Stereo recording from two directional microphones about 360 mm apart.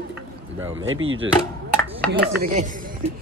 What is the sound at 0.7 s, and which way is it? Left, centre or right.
Speech, right.